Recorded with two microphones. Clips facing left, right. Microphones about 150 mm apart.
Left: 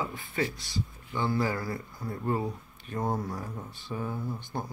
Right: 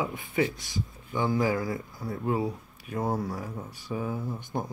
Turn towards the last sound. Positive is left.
turn(degrees=-15)  # may be behind; listen again after turning